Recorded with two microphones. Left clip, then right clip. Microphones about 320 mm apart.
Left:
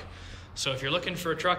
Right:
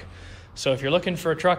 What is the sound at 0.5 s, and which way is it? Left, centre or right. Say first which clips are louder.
A man's voice: right 7 dB; centre.